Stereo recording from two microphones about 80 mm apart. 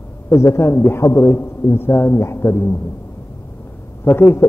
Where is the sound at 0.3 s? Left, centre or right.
Left.